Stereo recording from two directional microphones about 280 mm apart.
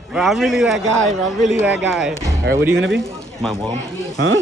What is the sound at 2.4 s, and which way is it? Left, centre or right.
Speech, right.